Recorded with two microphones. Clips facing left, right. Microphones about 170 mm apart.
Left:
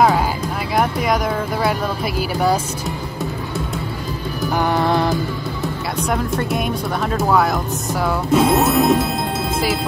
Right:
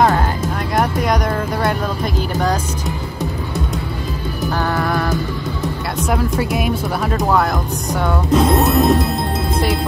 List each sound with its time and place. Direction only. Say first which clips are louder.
0.7 s a sound: even; centre (ahead or behind)
4.6 s music: left 3 dB; 25° left (ahead or behind)
6.0 s speech: right 2 dB; centre (ahead or behind)